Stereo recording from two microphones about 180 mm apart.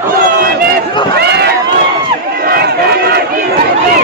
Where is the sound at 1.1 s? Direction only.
65° right (ahead or behind).